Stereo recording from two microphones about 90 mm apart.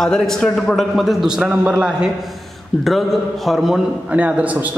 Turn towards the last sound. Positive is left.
turn(degrees=-15)  # may be behind; listen again after turning